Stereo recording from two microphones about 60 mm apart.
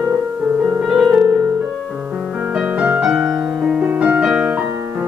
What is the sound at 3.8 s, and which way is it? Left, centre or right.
Music, right.